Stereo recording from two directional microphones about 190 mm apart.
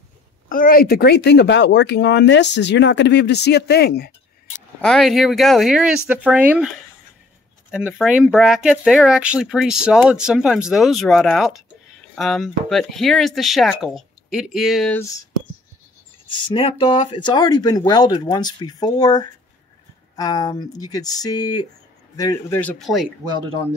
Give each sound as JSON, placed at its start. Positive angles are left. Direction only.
{"t": 0.5, "sound": "speech", "side_deg": 50}
{"t": 4.8, "sound": "speech", "side_deg": 0}
{"t": 7.7, "sound": "speech", "side_deg": -5}
{"t": 16.5, "sound": "speech", "side_deg": 30}
{"t": 22.6, "sound": "speech", "side_deg": 5}